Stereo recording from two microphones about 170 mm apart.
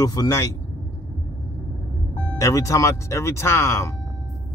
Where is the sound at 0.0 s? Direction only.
20° left (ahead or behind).